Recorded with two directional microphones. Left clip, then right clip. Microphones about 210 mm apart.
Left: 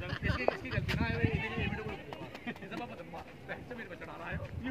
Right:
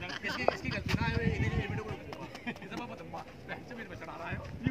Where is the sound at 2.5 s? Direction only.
35° right (ahead or behind).